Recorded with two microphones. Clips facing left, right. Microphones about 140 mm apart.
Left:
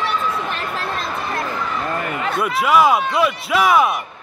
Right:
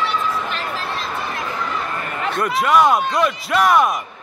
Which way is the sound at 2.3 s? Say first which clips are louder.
Even; 5° left (ahead or behind).